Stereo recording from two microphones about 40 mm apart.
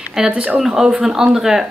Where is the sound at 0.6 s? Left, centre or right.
Centre.